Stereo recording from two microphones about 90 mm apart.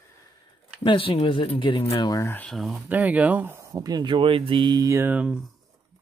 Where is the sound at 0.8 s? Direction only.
75° left (ahead or behind).